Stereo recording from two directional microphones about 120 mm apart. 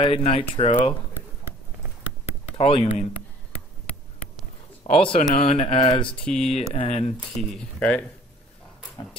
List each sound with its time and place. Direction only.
0.0 s speech: 55° left (ahead or behind)
2.5 s speech: 55° left (ahead or behind)
5.0 s speech: 50° left (ahead or behind)
5.8 s a sound: 40° left (ahead or behind)
6.0 s speech: 5° left (ahead or behind)
6.5 s speech: 60° left (ahead or behind)
7.2 s speech: 5° left (ahead or behind)